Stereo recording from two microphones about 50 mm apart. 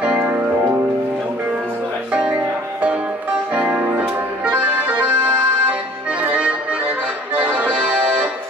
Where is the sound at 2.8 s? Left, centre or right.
Right.